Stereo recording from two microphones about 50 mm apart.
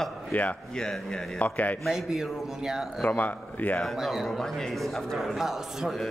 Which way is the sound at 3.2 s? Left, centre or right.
Left.